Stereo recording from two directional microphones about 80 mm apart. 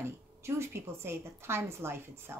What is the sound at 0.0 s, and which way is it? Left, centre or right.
A woman's voice, right.